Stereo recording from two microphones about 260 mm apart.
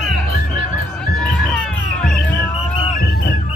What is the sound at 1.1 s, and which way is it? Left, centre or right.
Music, centre.